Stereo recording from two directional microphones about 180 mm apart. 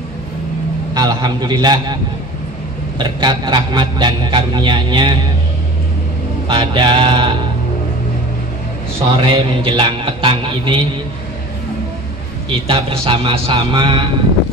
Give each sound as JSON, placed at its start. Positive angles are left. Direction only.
{"t": 0.9, "sound": "a man's voice", "side_deg": -25}
{"t": 3.0, "sound": "a man's voice", "side_deg": -25}
{"t": 6.4, "sound": "a man's voice", "side_deg": -25}
{"t": 9.1, "sound": "a man's voice", "side_deg": -30}
{"t": 12.4, "sound": "a man's voice", "side_deg": -30}